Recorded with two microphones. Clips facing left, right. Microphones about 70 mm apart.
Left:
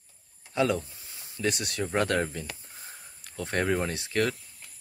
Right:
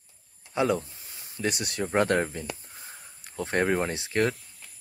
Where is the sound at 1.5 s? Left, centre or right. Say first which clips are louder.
Right 2 dB; right.